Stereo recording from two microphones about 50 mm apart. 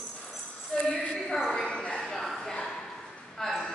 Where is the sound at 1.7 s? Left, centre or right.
Centre.